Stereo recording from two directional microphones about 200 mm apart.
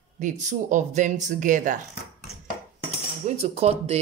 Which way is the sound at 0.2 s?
40° right (ahead or behind).